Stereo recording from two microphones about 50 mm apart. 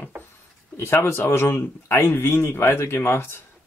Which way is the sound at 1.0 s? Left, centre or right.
Left.